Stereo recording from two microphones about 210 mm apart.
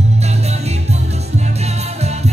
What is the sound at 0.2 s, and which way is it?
Music, 30° right (ahead or behind).